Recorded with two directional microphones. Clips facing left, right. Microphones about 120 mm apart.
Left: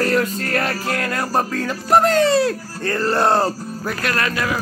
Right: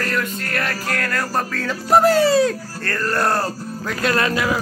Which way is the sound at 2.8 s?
25° left (ahead or behind).